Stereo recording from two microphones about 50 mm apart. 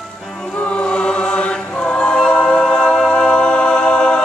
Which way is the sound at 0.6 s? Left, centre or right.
Left.